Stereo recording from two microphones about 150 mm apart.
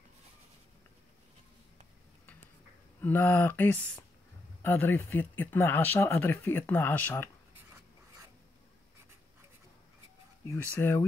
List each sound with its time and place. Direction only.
3.0 s speech: 10° left (ahead or behind)
10.5 s speech: 15° left (ahead or behind)